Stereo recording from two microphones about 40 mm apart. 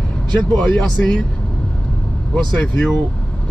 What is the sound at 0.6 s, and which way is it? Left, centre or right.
Speech, left.